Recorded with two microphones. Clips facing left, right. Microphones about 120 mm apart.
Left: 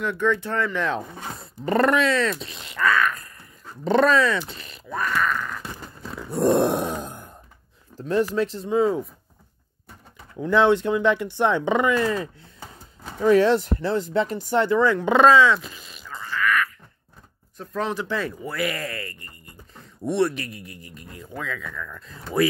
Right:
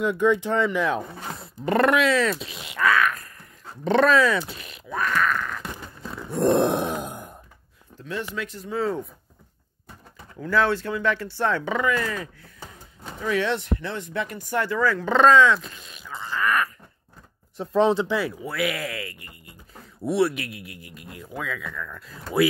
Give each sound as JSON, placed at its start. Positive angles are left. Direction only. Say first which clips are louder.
{"t": 0.0, "sound": "speech", "louder": "right 2 dB", "side_deg": -15}
{"t": 1.4, "sound": "a sound", "louder": "even", "side_deg": 0}
{"t": 6.2, "sound": "groan", "louder": "left 1 dB", "side_deg": 0}
{"t": 7.1, "sound": "wail", "louder": "right 3 dB", "side_deg": -15}
{"t": 8.0, "sound": "speech", "louder": "left 9 dB", "side_deg": 40}
{"t": 10.3, "sound": "speech", "louder": "left 4 dB", "side_deg": 20}
{"t": 13.2, "sound": "speech", "louder": "left 8 dB", "side_deg": 40}
{"t": 16.1, "sound": "quack", "louder": "even", "side_deg": -25}
{"t": 17.6, "sound": "speech", "louder": "right 7 dB", "side_deg": -25}
{"t": 18.1, "sound": "speech", "louder": "right 1 dB", "side_deg": -5}